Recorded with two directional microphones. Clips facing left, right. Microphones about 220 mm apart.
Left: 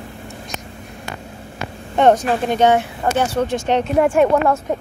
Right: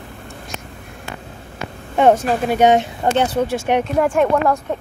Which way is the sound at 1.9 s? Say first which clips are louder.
Even; 5° right (ahead or behind).